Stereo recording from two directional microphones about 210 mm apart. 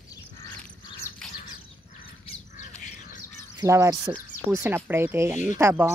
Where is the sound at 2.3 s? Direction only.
35° left (ahead or behind).